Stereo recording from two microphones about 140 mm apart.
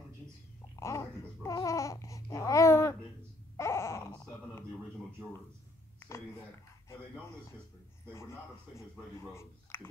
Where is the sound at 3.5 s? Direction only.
20° left (ahead or behind).